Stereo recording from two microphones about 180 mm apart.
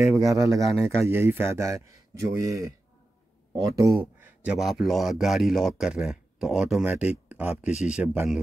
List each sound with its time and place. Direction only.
0.2 s a man's voice: 20° right (ahead or behind)
4.2 s a man's voice: 5° right (ahead or behind)